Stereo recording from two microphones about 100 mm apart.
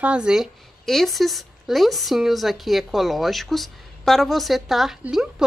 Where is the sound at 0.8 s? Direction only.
5° left (ahead or behind).